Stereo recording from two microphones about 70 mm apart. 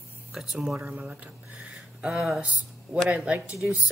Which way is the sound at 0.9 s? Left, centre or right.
Right.